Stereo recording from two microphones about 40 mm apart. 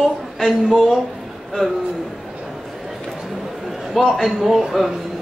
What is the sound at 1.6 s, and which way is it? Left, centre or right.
Speech, left.